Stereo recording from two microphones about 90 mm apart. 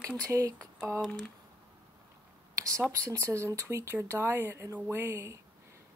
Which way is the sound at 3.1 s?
30° right (ahead or behind).